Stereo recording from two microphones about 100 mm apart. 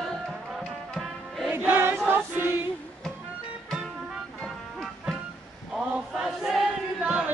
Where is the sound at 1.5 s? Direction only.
20° right (ahead or behind).